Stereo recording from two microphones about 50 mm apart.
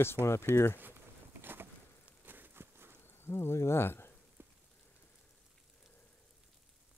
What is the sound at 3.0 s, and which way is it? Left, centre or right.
Speech, left.